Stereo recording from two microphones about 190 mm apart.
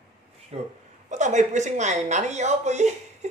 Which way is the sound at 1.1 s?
40° right (ahead or behind).